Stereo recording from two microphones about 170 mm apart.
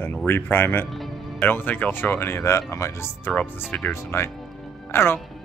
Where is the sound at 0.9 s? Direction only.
Centre (ahead or behind).